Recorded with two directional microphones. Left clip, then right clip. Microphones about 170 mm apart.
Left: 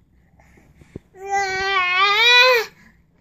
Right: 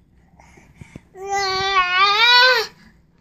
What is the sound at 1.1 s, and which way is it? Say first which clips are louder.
Babbling: even; 5° left (ahead or behind).